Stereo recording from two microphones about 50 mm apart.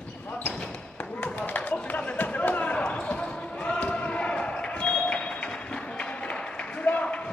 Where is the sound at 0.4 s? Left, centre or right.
Left.